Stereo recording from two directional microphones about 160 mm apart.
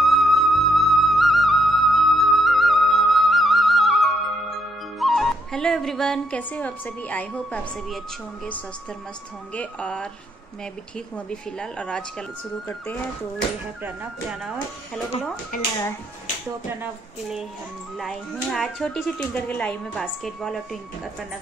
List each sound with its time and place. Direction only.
0.0 s music: centre (ahead or behind)
4.9 s speech: centre (ahead or behind)
9.5 s speech: 10° left (ahead or behind)
11.1 s speech: 5° left (ahead or behind)
15.5 s speech: 55° left (ahead or behind)
16.8 s speech: centre (ahead or behind)